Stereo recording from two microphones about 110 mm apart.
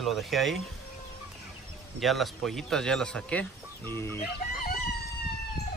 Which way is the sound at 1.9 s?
Centre (ahead or behind).